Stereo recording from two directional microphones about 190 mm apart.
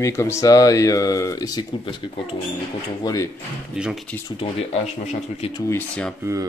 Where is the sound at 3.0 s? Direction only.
20° left (ahead or behind).